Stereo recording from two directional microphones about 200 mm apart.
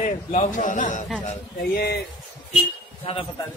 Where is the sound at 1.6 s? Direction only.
50° left (ahead or behind).